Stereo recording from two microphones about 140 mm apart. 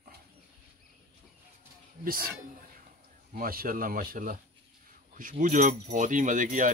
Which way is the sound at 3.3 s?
90° right.